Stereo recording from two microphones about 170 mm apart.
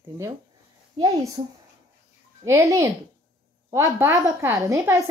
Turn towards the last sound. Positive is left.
turn(degrees=-15)  # may be behind; listen again after turning